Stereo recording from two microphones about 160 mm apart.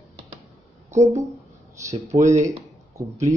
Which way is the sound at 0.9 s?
45° right (ahead or behind).